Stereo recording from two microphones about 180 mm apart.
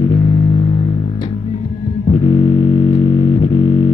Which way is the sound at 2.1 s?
30° left (ahead or behind).